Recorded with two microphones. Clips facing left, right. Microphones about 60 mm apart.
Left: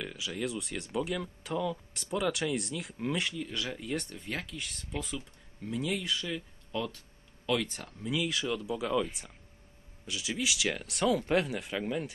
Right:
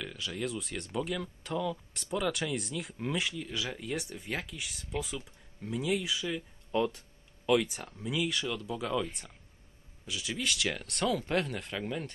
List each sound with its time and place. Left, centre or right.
0.0 s speech: centre
6.7 s speech: right
7.4 s speech: centre